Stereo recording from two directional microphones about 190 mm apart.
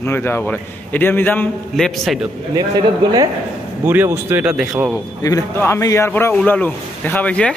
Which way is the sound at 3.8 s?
10° right (ahead or behind).